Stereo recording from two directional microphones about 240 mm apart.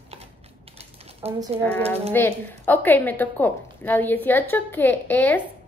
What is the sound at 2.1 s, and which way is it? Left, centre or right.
A woman's voice, centre.